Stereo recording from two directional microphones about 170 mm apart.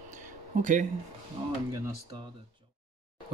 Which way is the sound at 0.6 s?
50° right (ahead or behind).